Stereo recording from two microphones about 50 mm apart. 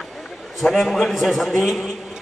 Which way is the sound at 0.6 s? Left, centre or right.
Centre.